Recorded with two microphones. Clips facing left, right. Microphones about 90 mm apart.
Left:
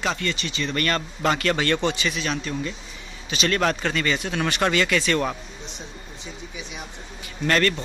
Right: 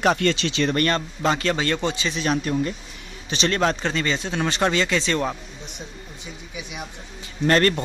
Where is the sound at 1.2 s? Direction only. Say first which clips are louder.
Even; 20° right (ahead or behind).